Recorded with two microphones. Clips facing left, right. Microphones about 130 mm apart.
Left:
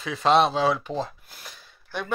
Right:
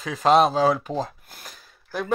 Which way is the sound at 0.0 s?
40° right (ahead or behind).